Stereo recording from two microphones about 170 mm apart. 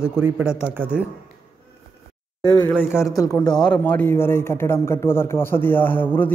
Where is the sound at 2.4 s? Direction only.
5° left (ahead or behind).